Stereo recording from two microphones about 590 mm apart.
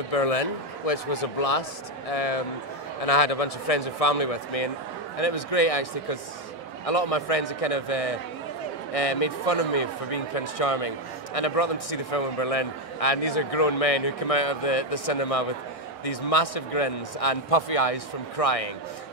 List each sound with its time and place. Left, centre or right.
0.1 s a man's voice: left